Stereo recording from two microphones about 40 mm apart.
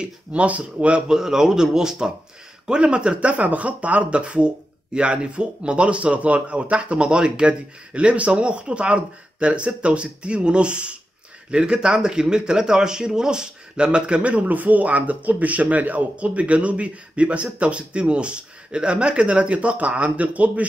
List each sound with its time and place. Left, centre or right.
0.3 s speech: right
1.1 s speech: centre; by 16.1 s right
16.2 s speech: right